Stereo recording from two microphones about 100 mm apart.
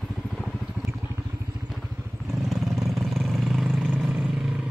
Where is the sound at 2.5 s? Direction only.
Centre (ahead or behind).